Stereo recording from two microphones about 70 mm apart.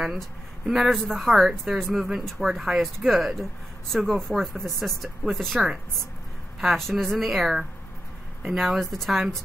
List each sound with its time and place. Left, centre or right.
0.7 s speech: centre
6.8 s speech: centre